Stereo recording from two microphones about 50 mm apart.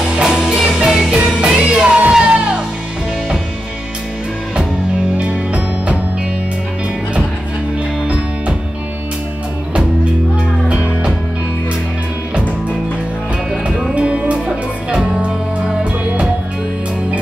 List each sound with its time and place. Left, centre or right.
0.1 s music: centre
5.1 s music: right
10.7 s music: right
13.7 s music: centre